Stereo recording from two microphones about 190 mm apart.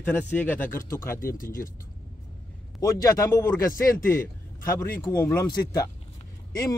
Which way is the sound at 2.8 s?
15° left (ahead or behind).